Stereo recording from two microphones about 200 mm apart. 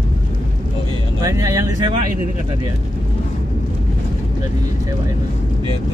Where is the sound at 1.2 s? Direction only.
15° right (ahead or behind).